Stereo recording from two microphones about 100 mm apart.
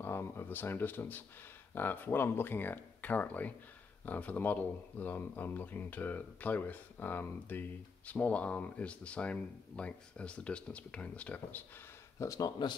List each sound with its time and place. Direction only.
0.0 s speech: 25° left (ahead or behind)
12.2 s speech: 35° left (ahead or behind)